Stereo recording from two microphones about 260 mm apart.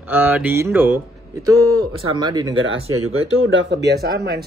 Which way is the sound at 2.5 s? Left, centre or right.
Right.